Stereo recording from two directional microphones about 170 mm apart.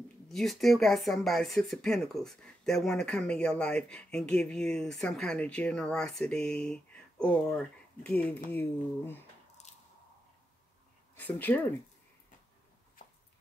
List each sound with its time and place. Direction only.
0.3 s speech: centre (ahead or behind)
11.1 s speech: 10° left (ahead or behind)
13.0 s a sound: 45° left (ahead or behind)